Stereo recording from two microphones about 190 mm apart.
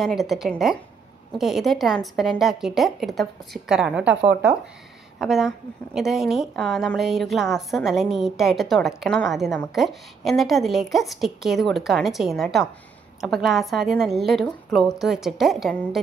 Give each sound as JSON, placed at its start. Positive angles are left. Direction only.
{"t": 0.0, "sound": "a woman's voice", "side_deg": 0}
{"t": 4.2, "sound": "speech", "side_deg": -65}
{"t": 5.2, "sound": "a woman's voice", "side_deg": 0}